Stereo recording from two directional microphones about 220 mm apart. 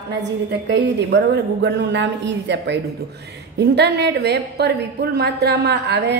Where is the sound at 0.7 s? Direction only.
50° right (ahead or behind).